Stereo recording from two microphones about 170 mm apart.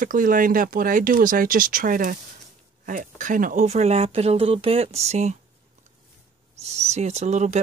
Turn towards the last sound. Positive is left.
turn(degrees=-45)  # may be behind; listen again after turning